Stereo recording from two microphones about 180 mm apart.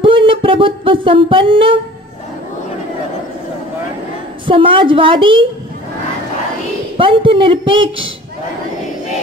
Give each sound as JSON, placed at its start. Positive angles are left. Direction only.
{"t": 0.0, "sound": "a sound", "side_deg": -30}
{"t": 4.5, "sound": "speech", "side_deg": -30}
{"t": 7.0, "sound": "speech", "side_deg": -30}